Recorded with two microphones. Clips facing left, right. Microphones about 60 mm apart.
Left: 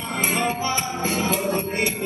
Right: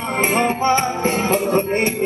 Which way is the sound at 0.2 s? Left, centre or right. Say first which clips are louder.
Right 6 dB; right.